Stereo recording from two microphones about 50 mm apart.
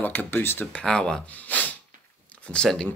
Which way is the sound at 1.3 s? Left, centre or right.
Left.